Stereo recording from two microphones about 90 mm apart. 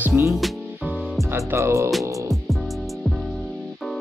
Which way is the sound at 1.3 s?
30° right (ahead or behind).